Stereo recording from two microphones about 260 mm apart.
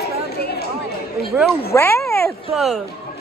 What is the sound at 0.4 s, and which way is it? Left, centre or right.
Chatter, left.